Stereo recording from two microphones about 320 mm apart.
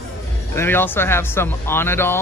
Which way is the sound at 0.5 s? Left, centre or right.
Centre.